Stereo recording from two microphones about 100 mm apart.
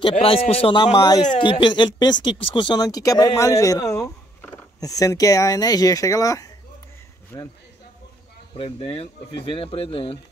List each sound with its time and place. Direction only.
0.0 s speech: 70° left (ahead or behind)
0.7 s speech: 45° left (ahead or behind)
7.3 s speech: 20° left (ahead or behind)
8.5 s speech: 65° left (ahead or behind)